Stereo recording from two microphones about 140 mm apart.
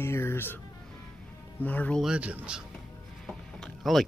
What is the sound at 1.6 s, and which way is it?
Speech, 10° left (ahead or behind).